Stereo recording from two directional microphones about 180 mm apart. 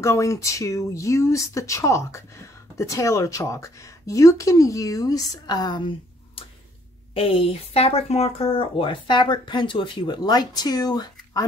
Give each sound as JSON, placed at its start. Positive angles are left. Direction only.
{"t": 0.0, "sound": "speech", "side_deg": 15}